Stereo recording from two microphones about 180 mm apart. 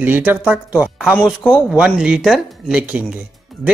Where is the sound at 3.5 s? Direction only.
Centre (ahead or behind).